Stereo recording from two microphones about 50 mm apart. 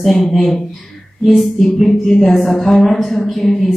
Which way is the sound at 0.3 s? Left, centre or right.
Centre.